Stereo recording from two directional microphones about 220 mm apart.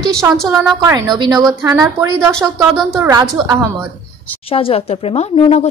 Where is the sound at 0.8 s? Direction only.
15° right (ahead or behind).